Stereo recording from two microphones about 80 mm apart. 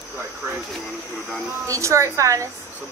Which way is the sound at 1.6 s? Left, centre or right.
Right.